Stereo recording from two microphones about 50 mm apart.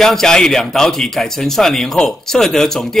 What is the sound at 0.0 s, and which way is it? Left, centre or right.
Speech, centre.